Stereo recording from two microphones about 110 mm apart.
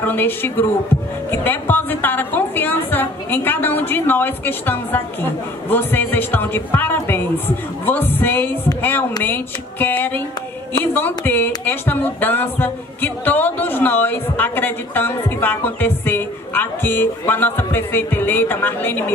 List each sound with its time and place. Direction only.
0.0 s a woman's voice: 20° left (ahead or behind)